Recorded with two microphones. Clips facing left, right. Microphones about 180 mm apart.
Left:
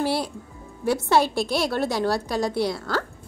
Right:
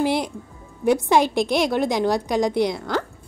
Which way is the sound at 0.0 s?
15° right (ahead or behind).